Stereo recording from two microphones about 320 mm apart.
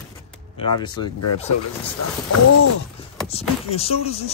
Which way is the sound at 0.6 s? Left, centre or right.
Centre.